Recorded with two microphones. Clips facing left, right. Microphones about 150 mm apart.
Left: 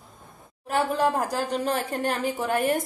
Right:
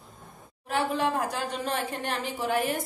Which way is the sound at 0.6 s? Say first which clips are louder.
Left 3 dB; 45° left (ahead or behind).